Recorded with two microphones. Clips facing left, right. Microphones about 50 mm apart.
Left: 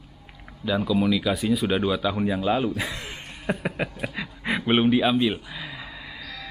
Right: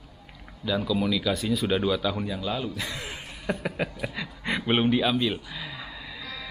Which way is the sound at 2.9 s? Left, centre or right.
Centre.